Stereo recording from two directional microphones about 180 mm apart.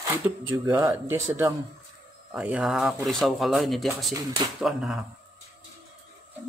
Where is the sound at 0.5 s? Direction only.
20° right (ahead or behind); by 5.1 s centre (ahead or behind).